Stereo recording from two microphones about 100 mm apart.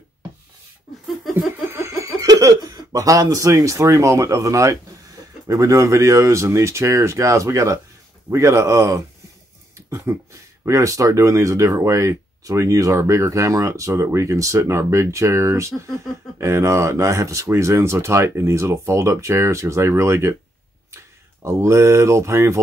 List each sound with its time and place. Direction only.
1.3 s speech: 25° right (ahead or behind)